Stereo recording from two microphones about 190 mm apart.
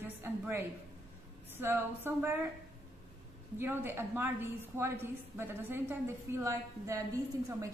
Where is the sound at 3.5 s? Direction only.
10° right (ahead or behind).